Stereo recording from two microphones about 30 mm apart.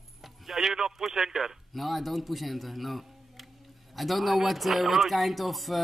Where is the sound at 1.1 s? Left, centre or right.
Centre.